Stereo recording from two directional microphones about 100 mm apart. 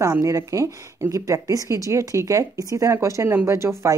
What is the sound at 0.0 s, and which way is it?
A woman's voice, 35° right (ahead or behind).